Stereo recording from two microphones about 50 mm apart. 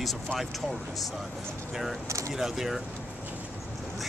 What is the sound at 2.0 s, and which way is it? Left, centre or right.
Speech, right.